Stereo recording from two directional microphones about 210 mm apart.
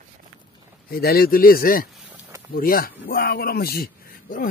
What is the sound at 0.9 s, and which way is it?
Speech, 45° left (ahead or behind).